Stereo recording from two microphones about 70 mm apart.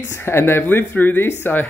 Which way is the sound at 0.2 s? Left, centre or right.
Left.